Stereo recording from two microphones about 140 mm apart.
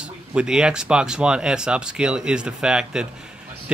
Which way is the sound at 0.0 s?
5° right (ahead or behind).